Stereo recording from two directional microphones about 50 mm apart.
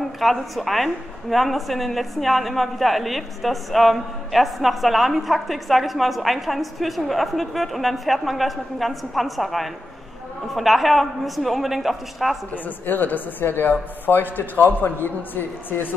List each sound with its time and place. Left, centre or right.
0.2 s a woman's voice: centre
12.6 s speech: left